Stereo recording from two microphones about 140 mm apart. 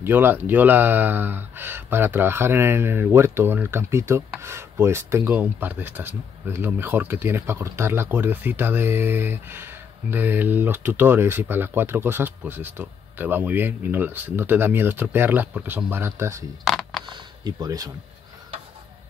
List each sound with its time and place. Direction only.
0.0 s speech: 15° right (ahead or behind)
16.6 s a sound: centre (ahead or behind)
17.1 s speech: 30° right (ahead or behind)